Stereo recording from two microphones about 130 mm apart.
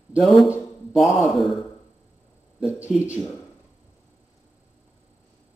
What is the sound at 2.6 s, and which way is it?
Speech, 5° right (ahead or behind).